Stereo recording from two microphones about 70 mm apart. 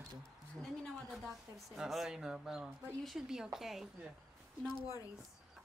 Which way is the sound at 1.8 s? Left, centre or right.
Centre.